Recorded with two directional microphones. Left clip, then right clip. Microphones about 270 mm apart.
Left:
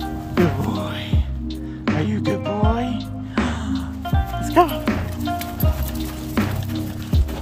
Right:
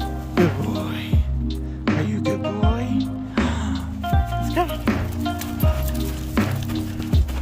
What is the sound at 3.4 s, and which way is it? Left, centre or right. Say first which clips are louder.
Music: left 1 dB; right.